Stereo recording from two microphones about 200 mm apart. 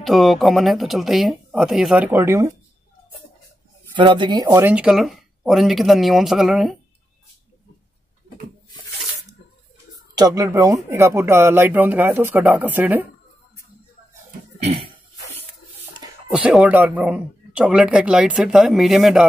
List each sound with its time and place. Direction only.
0.0 s speech: centre (ahead or behind)
3.9 s speech: 25° right (ahead or behind); by 6.8 s centre (ahead or behind)
10.1 s speech: 20° right (ahead or behind)
14.6 s a sound: 30° right (ahead or behind)
16.3 s speech: 5° right (ahead or behind)